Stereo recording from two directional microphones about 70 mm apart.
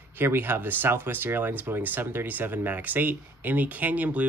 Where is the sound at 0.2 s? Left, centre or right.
Right.